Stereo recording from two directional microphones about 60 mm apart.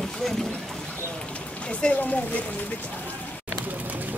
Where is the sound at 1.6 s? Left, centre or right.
Centre.